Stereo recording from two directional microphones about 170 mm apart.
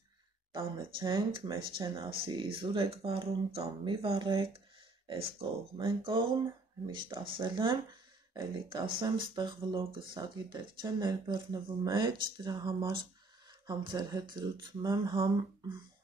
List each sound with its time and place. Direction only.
0.5 s speech: 30° right (ahead or behind)